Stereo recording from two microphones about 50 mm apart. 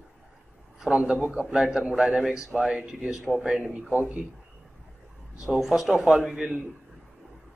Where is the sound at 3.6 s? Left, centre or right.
Right.